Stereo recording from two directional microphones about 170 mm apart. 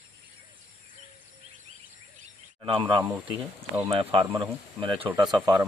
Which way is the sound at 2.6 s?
30° right (ahead or behind).